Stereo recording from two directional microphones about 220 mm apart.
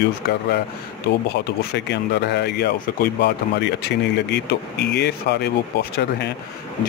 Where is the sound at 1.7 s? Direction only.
50° left (ahead or behind).